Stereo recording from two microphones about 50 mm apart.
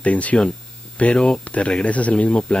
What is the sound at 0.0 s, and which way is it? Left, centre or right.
Speech, left.